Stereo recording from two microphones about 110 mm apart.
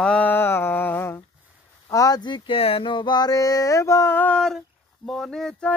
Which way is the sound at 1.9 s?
30° left (ahead or behind).